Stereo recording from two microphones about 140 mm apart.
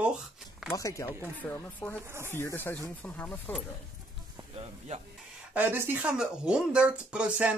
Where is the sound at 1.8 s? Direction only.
10° left (ahead or behind).